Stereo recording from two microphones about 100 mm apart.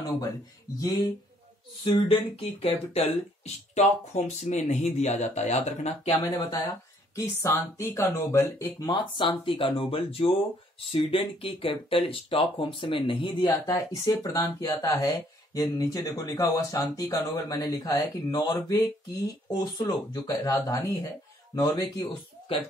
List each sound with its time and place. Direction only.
0.7 s speech: 40° left (ahead or behind)
1.9 s speech: 70° left (ahead or behind); by 6.1 s 90° left
6.3 s speech: 40° left (ahead or behind)
7.2 s speech: 30° left (ahead or behind)
8.7 s speech: 45° left (ahead or behind)
13.5 s speech: 35° left (ahead or behind)
22.5 s speech: 65° left (ahead or behind)